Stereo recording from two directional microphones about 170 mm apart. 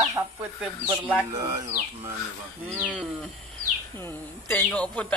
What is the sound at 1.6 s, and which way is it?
Speech, 40° right (ahead or behind).